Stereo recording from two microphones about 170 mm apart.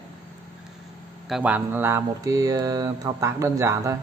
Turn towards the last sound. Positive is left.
turn(degrees=-15)  # may be behind; listen again after turning